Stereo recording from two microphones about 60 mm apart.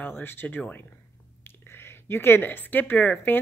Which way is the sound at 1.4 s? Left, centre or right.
Left.